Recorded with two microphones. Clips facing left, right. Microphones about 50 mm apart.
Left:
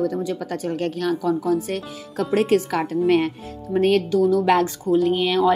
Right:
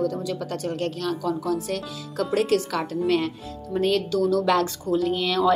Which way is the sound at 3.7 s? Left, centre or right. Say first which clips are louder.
Left 4 dB; left.